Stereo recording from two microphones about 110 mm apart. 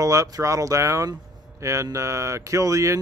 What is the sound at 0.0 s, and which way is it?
Speech, 30° right (ahead or behind).